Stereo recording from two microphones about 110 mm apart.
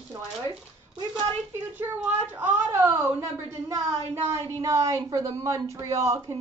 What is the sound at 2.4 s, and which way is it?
A woman's voice, 20° right (ahead or behind).